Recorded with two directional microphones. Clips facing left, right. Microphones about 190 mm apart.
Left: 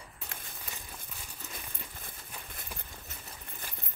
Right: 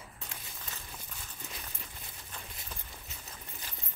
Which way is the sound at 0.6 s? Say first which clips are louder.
Left 1 dB; 10° left (ahead or behind).